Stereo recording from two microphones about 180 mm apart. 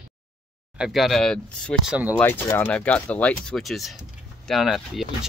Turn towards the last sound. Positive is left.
turn(degrees=0)  # may be behind; listen again after turning